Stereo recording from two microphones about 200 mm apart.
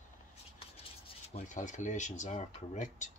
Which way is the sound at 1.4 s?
35° left (ahead or behind).